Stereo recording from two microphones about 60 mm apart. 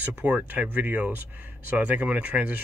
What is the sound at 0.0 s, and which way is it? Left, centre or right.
Speech, right.